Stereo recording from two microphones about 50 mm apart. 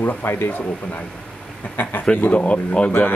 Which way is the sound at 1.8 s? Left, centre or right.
Left.